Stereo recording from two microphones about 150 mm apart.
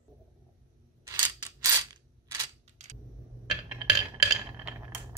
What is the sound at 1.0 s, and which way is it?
Scissors, 25° right (ahead or behind).